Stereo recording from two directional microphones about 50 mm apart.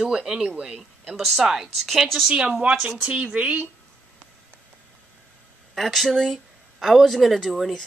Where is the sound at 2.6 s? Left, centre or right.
Right.